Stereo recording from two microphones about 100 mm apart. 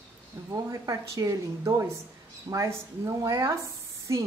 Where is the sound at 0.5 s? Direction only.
35° right (ahead or behind).